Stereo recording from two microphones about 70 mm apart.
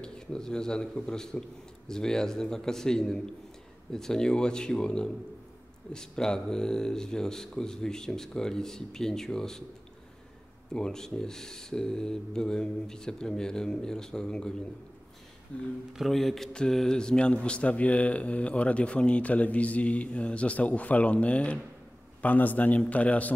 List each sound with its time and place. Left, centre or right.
0.0 s a man's voice: centre
10.7 s a man's voice: centre
16.0 s a man's voice: centre; by 23.3 s left